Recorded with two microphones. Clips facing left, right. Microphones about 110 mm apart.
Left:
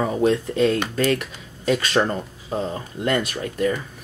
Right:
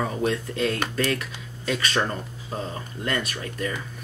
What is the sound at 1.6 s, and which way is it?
Speech, 45° left (ahead or behind).